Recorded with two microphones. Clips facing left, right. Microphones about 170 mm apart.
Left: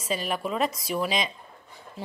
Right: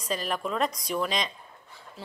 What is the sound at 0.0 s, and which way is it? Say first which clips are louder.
A woman's voice: left 1 dB; 5° left (ahead or behind).